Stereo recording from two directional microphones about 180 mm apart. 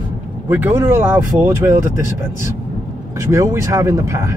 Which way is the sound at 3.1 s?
15° right (ahead or behind).